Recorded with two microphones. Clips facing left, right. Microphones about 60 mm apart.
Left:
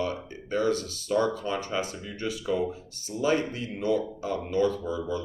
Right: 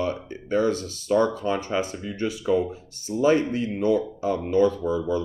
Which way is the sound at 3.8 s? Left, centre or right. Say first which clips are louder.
Right 4 dB; right.